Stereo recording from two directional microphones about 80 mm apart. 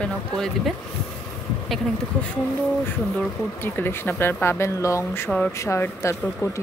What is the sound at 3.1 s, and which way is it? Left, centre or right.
Speech, left.